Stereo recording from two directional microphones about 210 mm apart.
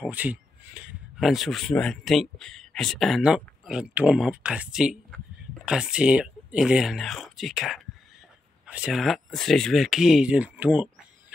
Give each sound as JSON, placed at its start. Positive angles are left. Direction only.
{"t": 0.0, "sound": "speech", "side_deg": -5}